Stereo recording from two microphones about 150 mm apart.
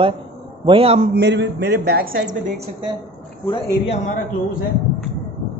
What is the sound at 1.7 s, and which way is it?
Speech, 90° right.